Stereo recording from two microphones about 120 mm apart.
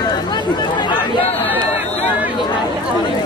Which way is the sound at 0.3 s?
40° left (ahead or behind).